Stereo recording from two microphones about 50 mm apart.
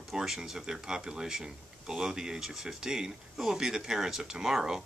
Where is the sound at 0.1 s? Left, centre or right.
Centre.